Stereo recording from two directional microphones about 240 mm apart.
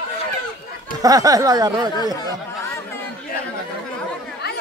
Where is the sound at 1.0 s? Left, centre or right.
Centre.